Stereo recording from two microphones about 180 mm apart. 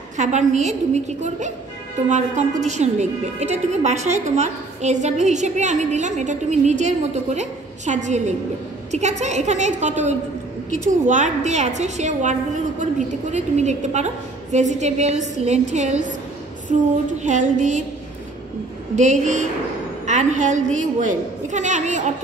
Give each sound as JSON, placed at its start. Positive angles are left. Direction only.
{"t": 0.2, "sound": "a woman's voice", "side_deg": -40}
{"t": 17.2, "sound": "music", "side_deg": -40}
{"t": 18.9, "sound": "a woman's voice", "side_deg": -40}